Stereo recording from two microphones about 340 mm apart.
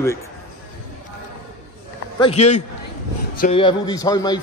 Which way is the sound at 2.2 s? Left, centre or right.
Centre.